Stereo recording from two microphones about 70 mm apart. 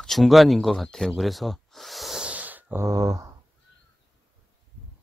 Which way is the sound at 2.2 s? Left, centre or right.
Right.